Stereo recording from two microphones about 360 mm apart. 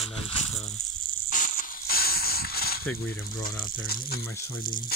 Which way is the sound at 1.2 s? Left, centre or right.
Left.